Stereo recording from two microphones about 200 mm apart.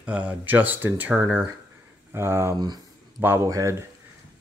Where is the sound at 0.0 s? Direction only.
5° right (ahead or behind).